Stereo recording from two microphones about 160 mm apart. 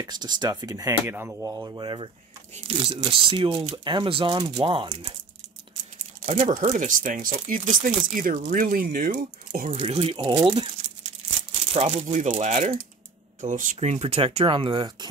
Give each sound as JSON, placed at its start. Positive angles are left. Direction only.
{"t": 0.0, "sound": "speech", "side_deg": -25}
{"t": 6.2, "sound": "speech", "side_deg": -50}
{"t": 11.7, "sound": "speech", "side_deg": -45}